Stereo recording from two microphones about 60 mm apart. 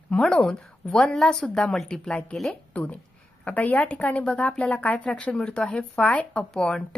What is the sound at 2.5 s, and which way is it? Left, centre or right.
A woman's voice, left.